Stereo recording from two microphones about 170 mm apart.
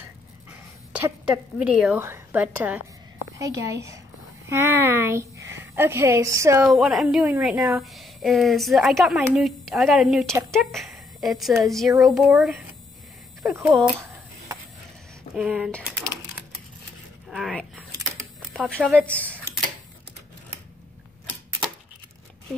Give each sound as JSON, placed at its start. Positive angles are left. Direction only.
{"t": 0.5, "sound": "a sound", "side_deg": -10}
{"t": 2.0, "sound": "a woman's voice", "side_deg": -15}
{"t": 3.3, "sound": "a woman's voice", "side_deg": -20}
{"t": 6.7, "sound": "a woman's voice", "side_deg": 0}
{"t": 13.5, "sound": "a woman's voice", "side_deg": -15}
{"t": 13.7, "sound": "a woman's voice", "side_deg": 0}
{"t": 15.3, "sound": "a woman's voice", "side_deg": -5}
{"t": 17.3, "sound": "a sound", "side_deg": 0}
{"t": 18.5, "sound": "speech", "side_deg": 0}